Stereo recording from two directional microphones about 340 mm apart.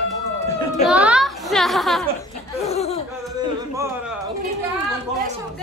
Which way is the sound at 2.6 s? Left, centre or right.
Centre.